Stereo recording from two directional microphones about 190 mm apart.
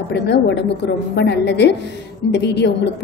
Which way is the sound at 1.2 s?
65° left (ahead or behind).